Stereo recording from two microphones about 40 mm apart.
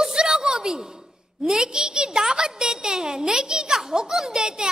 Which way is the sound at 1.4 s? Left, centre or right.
Centre.